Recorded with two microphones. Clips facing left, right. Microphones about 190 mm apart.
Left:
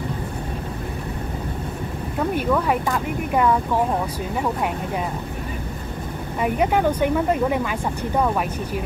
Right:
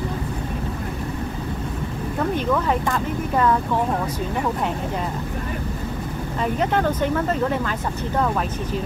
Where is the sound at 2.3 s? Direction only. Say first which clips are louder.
Left 1 dB; 10° left (ahead or behind).